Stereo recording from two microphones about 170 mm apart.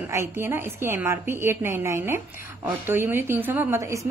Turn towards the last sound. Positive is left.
turn(degrees=-15)  # may be behind; listen again after turning